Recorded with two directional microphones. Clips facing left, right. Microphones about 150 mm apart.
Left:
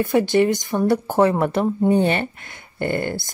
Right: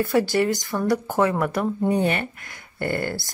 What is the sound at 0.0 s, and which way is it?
Speech, 20° left (ahead or behind).